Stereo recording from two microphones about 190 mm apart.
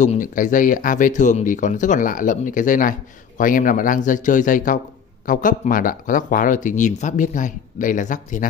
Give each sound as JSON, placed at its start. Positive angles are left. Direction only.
{"t": 0.0, "sound": "speech", "side_deg": 40}